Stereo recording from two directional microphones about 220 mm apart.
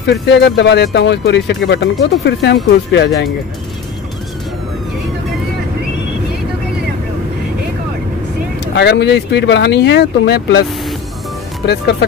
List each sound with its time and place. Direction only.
0.0 s speech: 50° left (ahead or behind)
8.7 s speech: 50° left (ahead or behind)
11.6 s speech: 50° left (ahead or behind)